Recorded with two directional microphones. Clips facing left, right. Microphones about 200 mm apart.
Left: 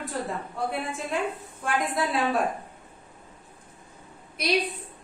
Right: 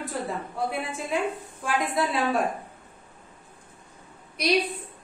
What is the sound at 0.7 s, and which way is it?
A woman's voice, centre (ahead or behind).